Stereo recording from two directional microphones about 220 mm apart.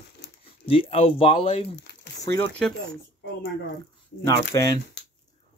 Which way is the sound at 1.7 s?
50° left (ahead or behind).